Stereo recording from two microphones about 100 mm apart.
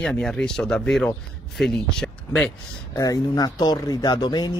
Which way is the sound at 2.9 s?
35° left (ahead or behind).